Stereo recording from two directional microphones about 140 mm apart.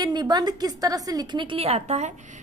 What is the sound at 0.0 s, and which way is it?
A woman's voice, 30° right (ahead or behind).